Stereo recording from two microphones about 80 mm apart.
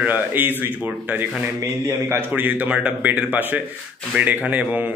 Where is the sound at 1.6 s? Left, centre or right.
Right.